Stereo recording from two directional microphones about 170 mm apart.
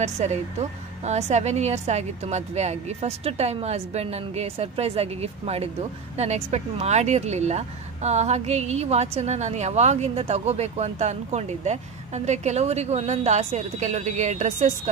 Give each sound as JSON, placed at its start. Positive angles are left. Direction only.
{"t": 0.0, "sound": "a woman's voice", "side_deg": -40}